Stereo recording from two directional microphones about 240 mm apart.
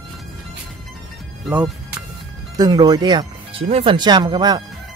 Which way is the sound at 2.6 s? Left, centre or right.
Centre.